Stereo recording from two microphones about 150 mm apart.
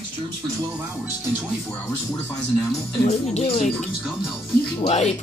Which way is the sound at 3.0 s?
40° left (ahead or behind).